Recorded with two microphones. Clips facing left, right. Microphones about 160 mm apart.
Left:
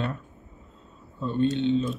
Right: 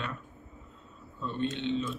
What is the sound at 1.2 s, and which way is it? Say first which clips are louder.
Speech: left 8 dB; 35° left (ahead or behind).